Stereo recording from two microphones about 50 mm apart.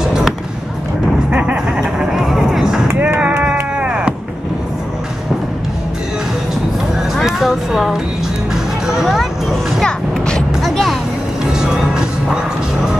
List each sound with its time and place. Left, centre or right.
0.0 s music: centre
1.3 s a sound: right
2.1 s music: centre
3.2 s music: right
7.2 s a sound: centre
9.0 s music: centre
9.8 s music: centre
10.6 s music: centre
11.5 s music: centre